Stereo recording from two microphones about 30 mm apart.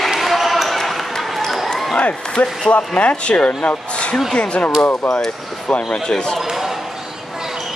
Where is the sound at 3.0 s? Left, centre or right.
Left.